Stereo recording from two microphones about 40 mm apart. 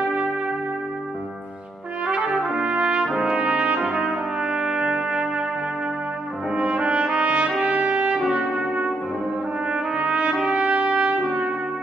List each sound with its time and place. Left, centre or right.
2.5 s brass instrument: right
3.1 s trumpet: centre
3.5 s trumpet: right
4.5 s brass instrument: right
4.8 s music: right
6.5 s trumpet: right
8.1 s music: right
9.9 s trumpet: right
10.6 s brass instrument: right